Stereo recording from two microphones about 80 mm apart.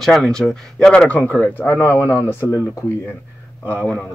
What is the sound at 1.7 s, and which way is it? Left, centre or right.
Speech, left.